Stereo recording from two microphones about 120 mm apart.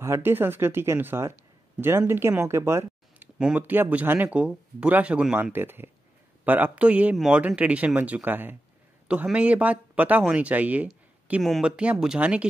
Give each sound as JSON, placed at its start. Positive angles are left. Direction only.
{"t": 0.0, "sound": "speech", "side_deg": -20}
{"t": 3.3, "sound": "speech", "side_deg": -10}